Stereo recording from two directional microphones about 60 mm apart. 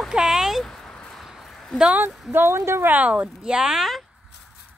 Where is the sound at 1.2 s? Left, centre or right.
Centre.